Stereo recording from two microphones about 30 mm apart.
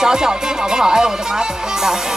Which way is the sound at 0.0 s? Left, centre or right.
Right.